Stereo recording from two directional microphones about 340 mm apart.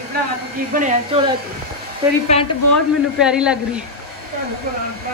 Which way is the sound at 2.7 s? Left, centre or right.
Centre.